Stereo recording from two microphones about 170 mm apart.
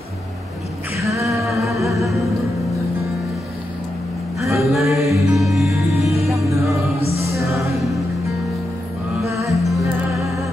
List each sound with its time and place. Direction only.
1.2 s humming: centre (ahead or behind)
4.4 s music: centre (ahead or behind)
6.2 s music: 15° right (ahead or behind)
7.0 s music: 35° left (ahead or behind)
7.7 s music: centre (ahead or behind)
9.5 s music: centre (ahead or behind)